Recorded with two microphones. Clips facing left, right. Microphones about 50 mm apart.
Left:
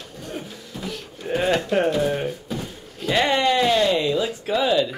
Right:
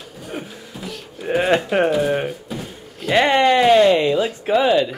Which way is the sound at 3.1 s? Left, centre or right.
Right.